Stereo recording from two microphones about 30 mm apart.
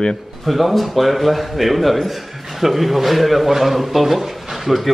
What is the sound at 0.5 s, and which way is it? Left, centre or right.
A man's voice, centre.